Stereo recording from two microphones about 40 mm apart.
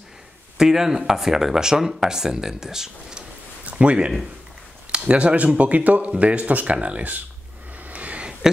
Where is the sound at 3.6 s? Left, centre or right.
Right.